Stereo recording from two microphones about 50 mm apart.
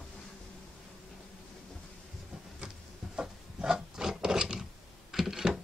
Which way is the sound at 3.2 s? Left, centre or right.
Centre.